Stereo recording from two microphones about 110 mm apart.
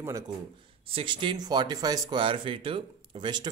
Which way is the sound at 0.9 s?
55° right (ahead or behind).